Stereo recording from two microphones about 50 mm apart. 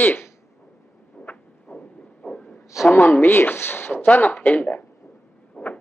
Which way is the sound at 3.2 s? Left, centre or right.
Left.